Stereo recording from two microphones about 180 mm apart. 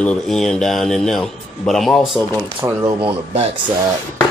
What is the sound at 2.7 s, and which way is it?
Speech, 15° right (ahead or behind).